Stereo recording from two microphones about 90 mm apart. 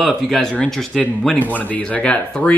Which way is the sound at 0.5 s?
15° left (ahead or behind).